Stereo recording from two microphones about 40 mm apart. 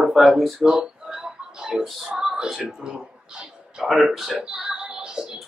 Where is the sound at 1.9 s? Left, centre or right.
Centre.